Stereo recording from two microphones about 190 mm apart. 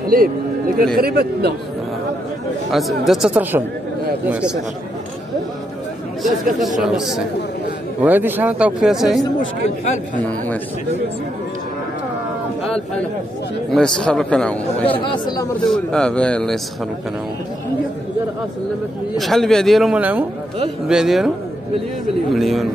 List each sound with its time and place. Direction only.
0.0 s speech: 50° right (ahead or behind)
2.7 s a man's voice: centre (ahead or behind)
6.2 s a man's voice: centre (ahead or behind)
13.7 s a man's voice: 5° left (ahead or behind)
14.9 s speech: 20° left (ahead or behind)
15.6 s a man's voice: 5° left (ahead or behind)
19.1 s a man's voice: centre (ahead or behind)
22.3 s a man's voice: centre (ahead or behind)